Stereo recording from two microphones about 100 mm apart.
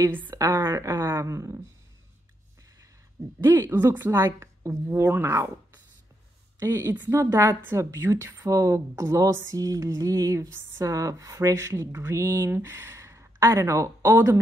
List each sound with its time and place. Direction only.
0.5 s a woman's voice: 30° right (ahead or behind)
3.4 s a woman's voice: 25° right (ahead or behind)
6.6 s a woman's voice: 25° right (ahead or behind)
8.4 s a sound: 30° right (ahead or behind)